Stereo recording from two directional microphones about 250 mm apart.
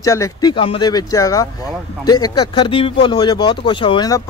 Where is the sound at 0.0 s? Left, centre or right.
Centre.